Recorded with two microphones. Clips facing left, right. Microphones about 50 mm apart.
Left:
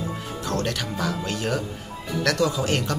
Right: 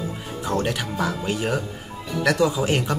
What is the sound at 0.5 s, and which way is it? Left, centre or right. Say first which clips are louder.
Speech: right 3 dB; centre.